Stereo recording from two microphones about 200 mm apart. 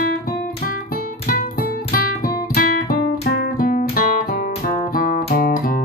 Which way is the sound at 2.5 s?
50° left (ahead or behind).